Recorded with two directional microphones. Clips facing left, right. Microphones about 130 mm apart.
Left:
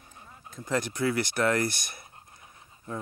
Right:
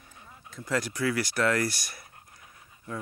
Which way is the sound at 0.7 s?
25° left (ahead or behind).